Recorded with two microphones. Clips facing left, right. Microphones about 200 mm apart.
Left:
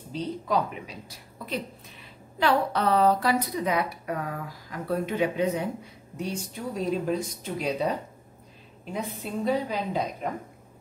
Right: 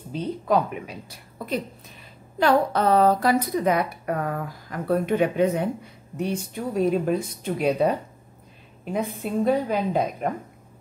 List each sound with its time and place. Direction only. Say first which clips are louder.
0.1 s a woman's voice: right 4 dB; 55° right (ahead or behind)
8.9 s a woman's voice: right 6 dB; 55° right (ahead or behind)